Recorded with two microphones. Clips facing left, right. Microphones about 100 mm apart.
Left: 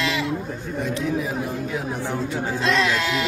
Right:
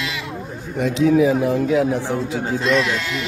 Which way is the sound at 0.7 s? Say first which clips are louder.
Right 9 dB; 90° right.